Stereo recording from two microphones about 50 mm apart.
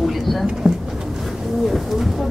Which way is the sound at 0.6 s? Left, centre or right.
Centre.